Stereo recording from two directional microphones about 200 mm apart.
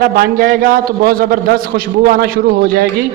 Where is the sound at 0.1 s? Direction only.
45° right (ahead or behind).